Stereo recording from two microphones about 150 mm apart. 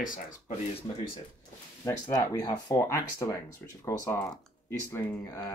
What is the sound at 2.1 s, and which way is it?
Speech, 25° left (ahead or behind).